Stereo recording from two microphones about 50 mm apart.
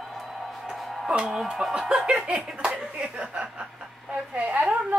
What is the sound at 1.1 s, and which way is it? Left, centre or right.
Speech, centre.